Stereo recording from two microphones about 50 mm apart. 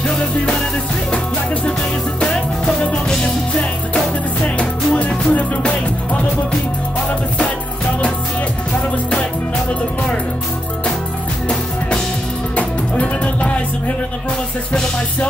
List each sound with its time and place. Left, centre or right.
1.1 s music: left
2.8 s music: centre
4.6 s music: left
12.5 s music: left